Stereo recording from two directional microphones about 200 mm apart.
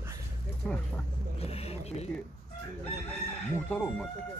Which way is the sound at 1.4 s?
30° left (ahead or behind).